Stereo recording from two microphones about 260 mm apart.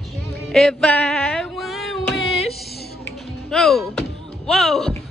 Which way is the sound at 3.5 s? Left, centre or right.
Centre.